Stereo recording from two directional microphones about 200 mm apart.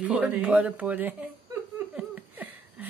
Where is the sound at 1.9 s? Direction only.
10° right (ahead or behind).